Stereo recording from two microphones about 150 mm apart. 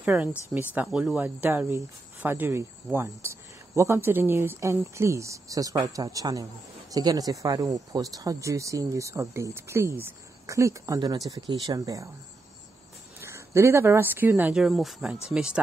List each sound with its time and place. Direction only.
0.0 s speech: 10° right (ahead or behind)
13.2 s speech: 20° right (ahead or behind)